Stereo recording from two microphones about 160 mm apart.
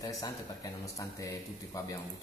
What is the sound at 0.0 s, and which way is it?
A man's voice, 20° left (ahead or behind).